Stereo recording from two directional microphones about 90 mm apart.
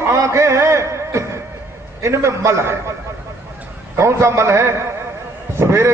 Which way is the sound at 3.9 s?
30° right (ahead or behind).